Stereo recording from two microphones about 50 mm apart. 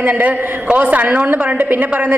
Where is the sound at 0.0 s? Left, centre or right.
Right.